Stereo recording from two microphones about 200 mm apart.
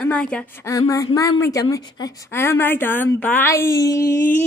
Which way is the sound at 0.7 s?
15° left (ahead or behind).